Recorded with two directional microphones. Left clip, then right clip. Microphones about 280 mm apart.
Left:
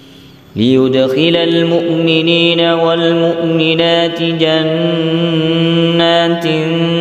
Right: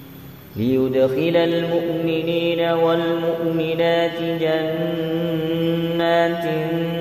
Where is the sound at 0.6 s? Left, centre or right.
Left.